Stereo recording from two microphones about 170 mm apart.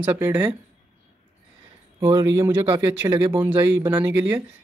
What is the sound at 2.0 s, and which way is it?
Speech, 20° right (ahead or behind).